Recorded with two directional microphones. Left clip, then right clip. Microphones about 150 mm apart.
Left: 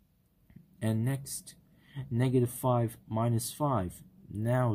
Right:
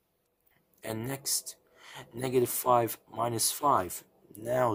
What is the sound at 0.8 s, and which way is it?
Speech, 25° right (ahead or behind).